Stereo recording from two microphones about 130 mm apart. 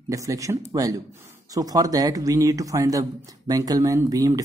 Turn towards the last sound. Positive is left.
turn(degrees=-25)  # may be behind; listen again after turning